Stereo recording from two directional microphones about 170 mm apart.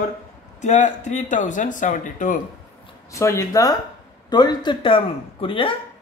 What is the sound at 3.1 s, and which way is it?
Speech, 15° left (ahead or behind).